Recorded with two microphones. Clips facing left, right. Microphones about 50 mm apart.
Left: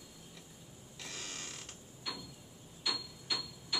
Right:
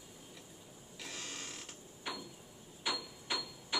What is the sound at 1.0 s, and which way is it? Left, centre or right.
Mechanisms, centre.